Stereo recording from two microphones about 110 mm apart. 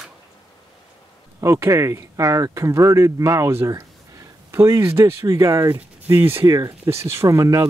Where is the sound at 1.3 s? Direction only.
25° right (ahead or behind).